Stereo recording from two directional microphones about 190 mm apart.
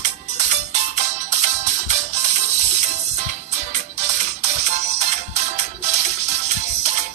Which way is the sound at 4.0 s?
35° right (ahead or behind).